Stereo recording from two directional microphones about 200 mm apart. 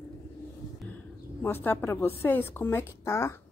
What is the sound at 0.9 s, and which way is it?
A woman's voice, 10° left (ahead or behind).